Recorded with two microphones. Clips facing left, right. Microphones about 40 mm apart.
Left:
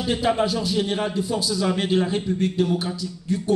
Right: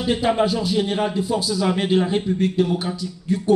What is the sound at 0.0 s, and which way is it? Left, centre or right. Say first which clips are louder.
A man's voice: right 2 dB; centre.